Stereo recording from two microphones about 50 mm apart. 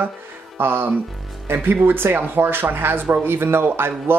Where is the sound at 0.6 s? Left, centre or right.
Right.